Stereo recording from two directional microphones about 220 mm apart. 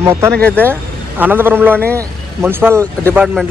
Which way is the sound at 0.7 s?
10° right (ahead or behind).